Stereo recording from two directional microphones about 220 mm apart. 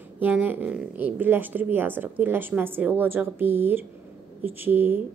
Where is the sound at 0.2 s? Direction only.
10° right (ahead or behind).